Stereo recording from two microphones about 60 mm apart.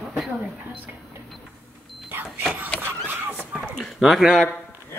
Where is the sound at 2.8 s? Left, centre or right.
Right.